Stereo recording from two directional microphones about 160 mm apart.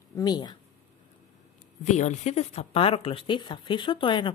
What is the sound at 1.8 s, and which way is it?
Speech, 50° left (ahead or behind).